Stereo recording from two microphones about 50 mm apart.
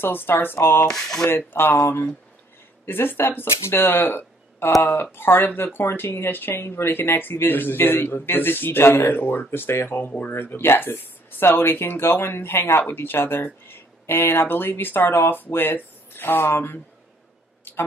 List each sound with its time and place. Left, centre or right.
0.0 s speech: left
0.8 s a sound: centre
1.3 s speech: left
9.9 s speech: left
10.3 s speech: left
17.7 s a sound: left